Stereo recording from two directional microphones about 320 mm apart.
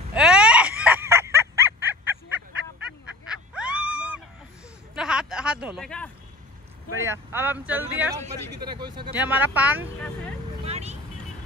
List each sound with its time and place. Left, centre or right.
0.1 s a sound: centre
7.0 s speech: centre
8.2 s speech: centre
10.6 s vehicle: centre